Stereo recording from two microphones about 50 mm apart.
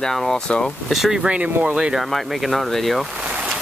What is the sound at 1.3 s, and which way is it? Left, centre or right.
Speech, right.